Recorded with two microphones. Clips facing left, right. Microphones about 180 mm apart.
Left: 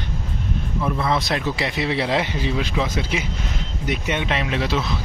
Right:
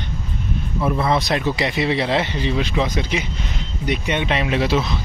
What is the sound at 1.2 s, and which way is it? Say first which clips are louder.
Speech: right 3 dB; centre (ahead or behind).